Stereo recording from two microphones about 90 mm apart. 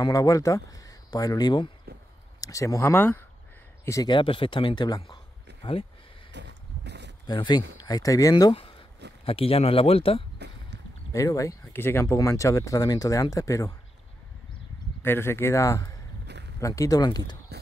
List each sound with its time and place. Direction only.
0.0 s speech: 40° left (ahead or behind)
2.4 s speech: 40° left (ahead or behind)
4.0 s speech: 65° left (ahead or behind)
7.2 s speech: 55° left (ahead or behind)
8.5 s speech: 80° left
11.1 s speech: 40° left (ahead or behind)
11.7 s speech: 25° left (ahead or behind)
15.0 s speech: 25° left (ahead or behind); by 17.4 s 45° left (ahead or behind)